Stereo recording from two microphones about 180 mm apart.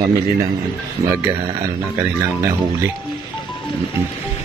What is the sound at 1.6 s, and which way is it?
Speech, 15° right (ahead or behind).